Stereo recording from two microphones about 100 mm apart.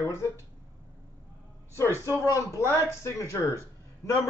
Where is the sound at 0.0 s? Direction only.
30° left (ahead or behind).